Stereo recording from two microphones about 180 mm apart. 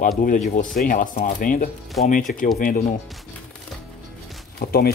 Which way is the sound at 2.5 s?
50° left (ahead or behind).